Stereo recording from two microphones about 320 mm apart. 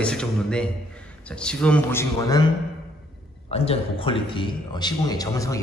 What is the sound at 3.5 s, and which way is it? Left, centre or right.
A man's voice, centre.